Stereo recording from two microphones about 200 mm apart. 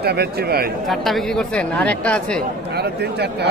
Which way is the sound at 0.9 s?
Centre (ahead or behind).